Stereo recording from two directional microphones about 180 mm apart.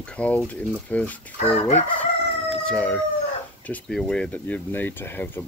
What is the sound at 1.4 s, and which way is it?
Chicken, 40° left (ahead or behind).